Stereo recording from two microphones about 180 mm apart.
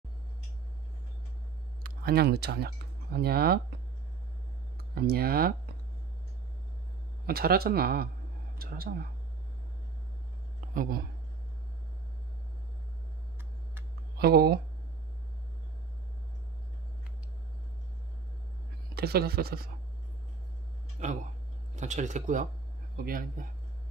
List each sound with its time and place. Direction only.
1.8 s speech: 55° right (ahead or behind)
4.9 s speech: 60° right (ahead or behind)
7.2 s speech: 60° right (ahead or behind)
10.7 s speech: 50° right (ahead or behind)
14.1 s speech: 60° right (ahead or behind)
18.9 s speech: 60° right (ahead or behind)
21.0 s speech: 40° right (ahead or behind)